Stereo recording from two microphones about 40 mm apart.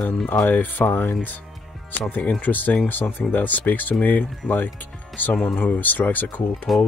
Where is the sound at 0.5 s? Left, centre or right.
Left.